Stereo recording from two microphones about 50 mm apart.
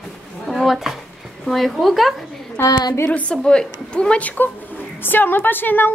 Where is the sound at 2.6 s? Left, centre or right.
Left.